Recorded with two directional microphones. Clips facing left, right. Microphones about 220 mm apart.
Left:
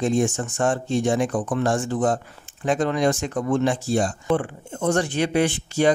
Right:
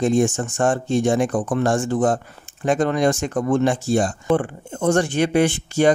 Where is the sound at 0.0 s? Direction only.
45° right (ahead or behind).